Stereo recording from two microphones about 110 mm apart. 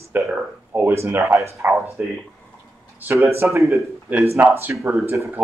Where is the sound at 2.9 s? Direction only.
20° right (ahead or behind).